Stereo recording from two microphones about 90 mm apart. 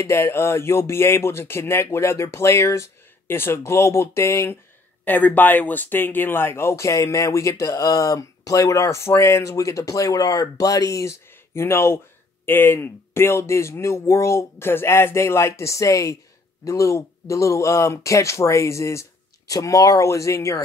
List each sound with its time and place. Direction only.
0.0 s speech: 30° left (ahead or behind)
5.0 s speech: 20° left (ahead or behind)